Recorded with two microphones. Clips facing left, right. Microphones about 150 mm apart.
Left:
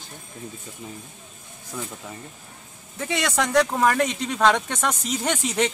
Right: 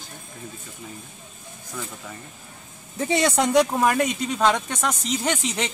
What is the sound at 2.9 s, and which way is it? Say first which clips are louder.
A man's voice: right 4 dB; 30° right (ahead or behind).